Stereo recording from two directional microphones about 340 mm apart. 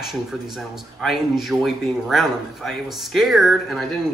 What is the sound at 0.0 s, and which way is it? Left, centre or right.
Speech, centre.